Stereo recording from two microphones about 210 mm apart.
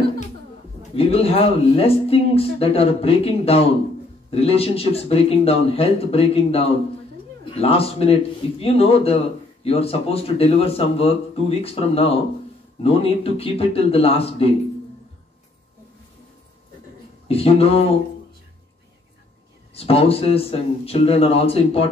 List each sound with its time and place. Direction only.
0.9 s speech: 30° left (ahead or behind)
17.3 s speech: 30° left (ahead or behind)
19.7 s speech: 30° left (ahead or behind)